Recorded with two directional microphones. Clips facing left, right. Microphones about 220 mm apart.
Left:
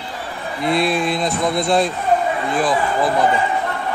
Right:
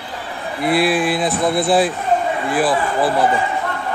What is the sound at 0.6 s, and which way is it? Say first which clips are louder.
Speech: right 2 dB; 5° right (ahead or behind).